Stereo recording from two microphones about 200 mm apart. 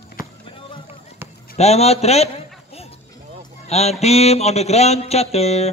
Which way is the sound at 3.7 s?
30° left (ahead or behind).